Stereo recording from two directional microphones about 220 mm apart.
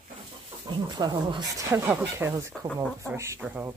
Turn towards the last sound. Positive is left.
turn(degrees=-5)  # may be behind; listen again after turning